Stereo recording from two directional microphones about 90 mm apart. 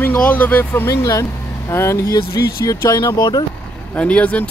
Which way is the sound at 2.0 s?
40° left (ahead or behind).